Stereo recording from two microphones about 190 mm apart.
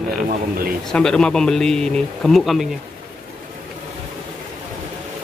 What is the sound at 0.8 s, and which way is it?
Speech, 5° left (ahead or behind).